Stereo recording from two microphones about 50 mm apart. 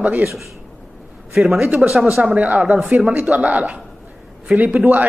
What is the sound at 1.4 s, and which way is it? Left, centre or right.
Speech, right.